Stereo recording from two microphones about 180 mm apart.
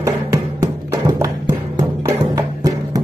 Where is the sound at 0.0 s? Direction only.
15° right (ahead or behind).